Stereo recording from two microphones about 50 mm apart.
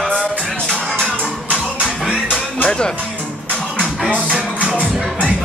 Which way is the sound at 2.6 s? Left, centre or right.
Centre.